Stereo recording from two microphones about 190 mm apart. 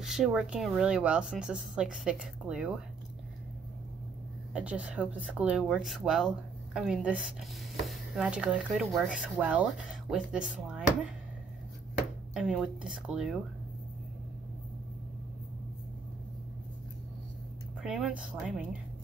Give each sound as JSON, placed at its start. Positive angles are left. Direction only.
{"t": 0.0, "sound": "speech", "side_deg": 0}
{"t": 4.6, "sound": "speech", "side_deg": -5}
{"t": 12.4, "sound": "speech", "side_deg": -5}
{"t": 17.8, "sound": "speech", "side_deg": -5}